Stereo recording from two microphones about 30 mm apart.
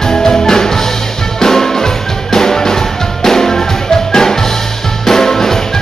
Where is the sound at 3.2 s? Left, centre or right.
Centre.